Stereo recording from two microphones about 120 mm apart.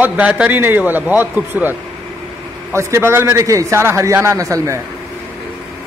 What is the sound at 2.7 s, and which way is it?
A man's voice, 20° right (ahead or behind).